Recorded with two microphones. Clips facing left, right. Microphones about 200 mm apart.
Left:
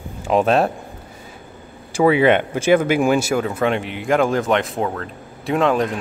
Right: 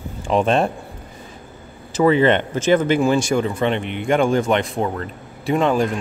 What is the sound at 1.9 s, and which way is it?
Speech, 10° left (ahead or behind).